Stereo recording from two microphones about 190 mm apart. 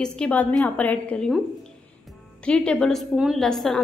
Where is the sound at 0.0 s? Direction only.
5° left (ahead or behind).